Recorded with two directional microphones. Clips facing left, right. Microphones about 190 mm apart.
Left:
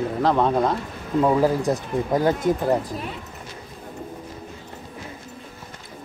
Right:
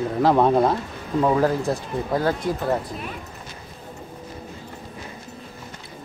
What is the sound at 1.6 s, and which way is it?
Speech, 15° left (ahead or behind).